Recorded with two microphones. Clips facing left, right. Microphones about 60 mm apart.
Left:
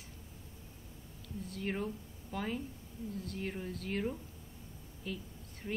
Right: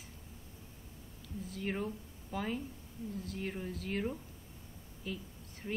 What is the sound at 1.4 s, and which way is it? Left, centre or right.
A woman's voice, centre.